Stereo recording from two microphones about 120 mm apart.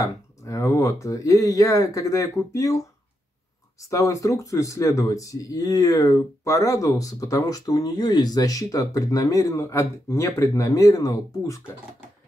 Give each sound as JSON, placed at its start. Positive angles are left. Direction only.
{"t": 0.0, "sound": "speech", "side_deg": 25}
{"t": 3.9, "sound": "speech", "side_deg": 25}